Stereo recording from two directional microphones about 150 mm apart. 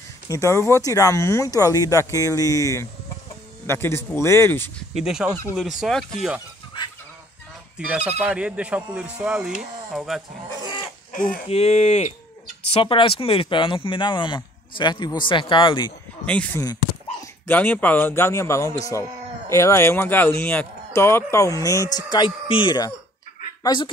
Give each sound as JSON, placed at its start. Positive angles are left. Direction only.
{"t": 0.3, "sound": "a man's voice", "side_deg": 20}
{"t": 4.9, "sound": "speech", "side_deg": -5}
{"t": 7.7, "sound": "speech", "side_deg": -10}
{"t": 11.1, "sound": "speech", "side_deg": 65}
{"t": 11.4, "sound": "speech", "side_deg": 45}
{"t": 12.6, "sound": "speech", "side_deg": 40}
{"t": 16.3, "sound": "a man's voice", "side_deg": 10}